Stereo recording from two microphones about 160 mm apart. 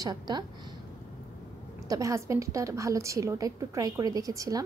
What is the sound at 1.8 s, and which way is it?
Speech, 20° right (ahead or behind).